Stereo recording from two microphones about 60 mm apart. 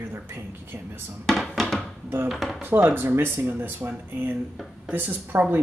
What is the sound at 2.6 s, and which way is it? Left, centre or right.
Speech, right.